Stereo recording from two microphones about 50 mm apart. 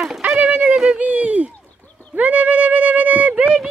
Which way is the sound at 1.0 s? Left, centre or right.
Right.